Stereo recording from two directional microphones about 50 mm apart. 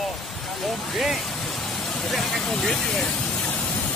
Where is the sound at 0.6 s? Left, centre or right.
Centre.